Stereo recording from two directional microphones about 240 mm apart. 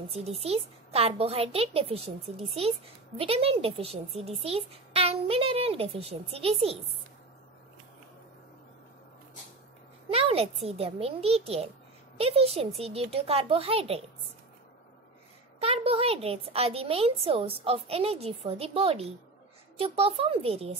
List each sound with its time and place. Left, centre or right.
0.1 s speech: right
10.1 s speech: right
15.6 s speech: right